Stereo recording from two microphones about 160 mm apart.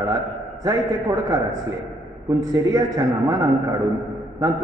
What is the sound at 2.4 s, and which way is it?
A man's voice, 20° right (ahead or behind).